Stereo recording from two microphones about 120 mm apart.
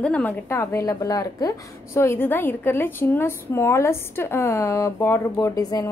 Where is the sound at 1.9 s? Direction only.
20° left (ahead or behind).